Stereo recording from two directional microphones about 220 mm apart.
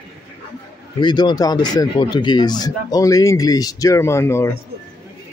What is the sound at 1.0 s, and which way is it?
Speech, 20° left (ahead or behind).